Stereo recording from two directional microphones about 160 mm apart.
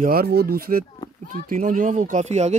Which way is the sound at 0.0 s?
70° right (ahead or behind).